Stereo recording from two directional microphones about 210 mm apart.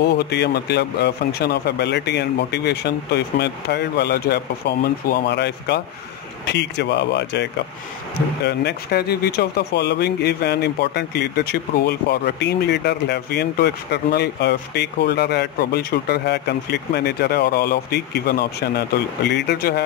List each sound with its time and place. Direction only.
0.0 s speech: 50° left (ahead or behind)
8.5 s speech: 50° left (ahead or behind)